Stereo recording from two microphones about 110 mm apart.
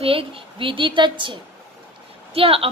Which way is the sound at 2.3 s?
60° right (ahead or behind).